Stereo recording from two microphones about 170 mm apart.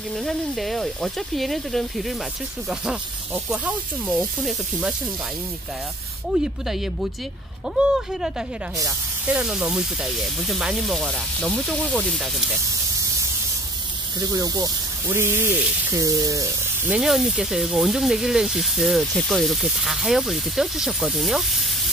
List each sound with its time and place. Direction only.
0.2 s speech: centre (ahead or behind)
6.3 s speech: 5° right (ahead or behind)
8.1 s speech: 5° right (ahead or behind)
8.7 s speech: 20° right (ahead or behind)
9.4 s speech: 5° right (ahead or behind)
14.3 s speech: 20° right (ahead or behind); by 21.6 s centre (ahead or behind)